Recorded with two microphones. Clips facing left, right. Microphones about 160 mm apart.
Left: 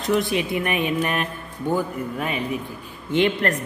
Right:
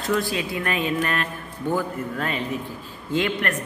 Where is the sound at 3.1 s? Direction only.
25° left (ahead or behind).